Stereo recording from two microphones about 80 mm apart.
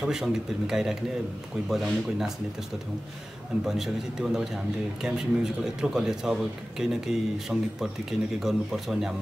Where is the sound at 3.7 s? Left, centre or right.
Centre.